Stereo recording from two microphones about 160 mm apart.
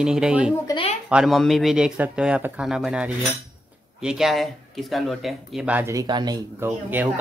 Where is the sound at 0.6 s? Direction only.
30° left (ahead or behind).